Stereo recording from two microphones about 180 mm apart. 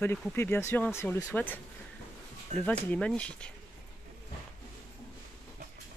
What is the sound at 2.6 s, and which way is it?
Speech, 10° left (ahead or behind).